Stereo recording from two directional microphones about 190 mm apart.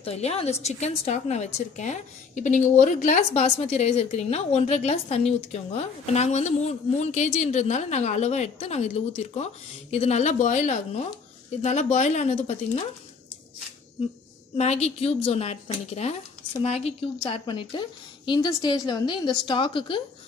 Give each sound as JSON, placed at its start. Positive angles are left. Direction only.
{"t": 0.0, "sound": "a woman's voice", "side_deg": 35}
{"t": 14.6, "sound": "a woman's voice", "side_deg": 35}